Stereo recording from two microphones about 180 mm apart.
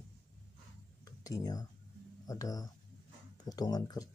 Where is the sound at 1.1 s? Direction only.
20° left (ahead or behind).